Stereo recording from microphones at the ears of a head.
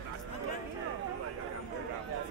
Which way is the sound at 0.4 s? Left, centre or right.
Right.